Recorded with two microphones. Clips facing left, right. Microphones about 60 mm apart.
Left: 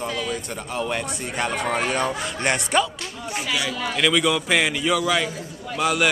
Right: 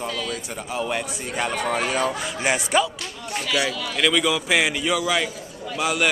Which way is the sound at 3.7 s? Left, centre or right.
Left.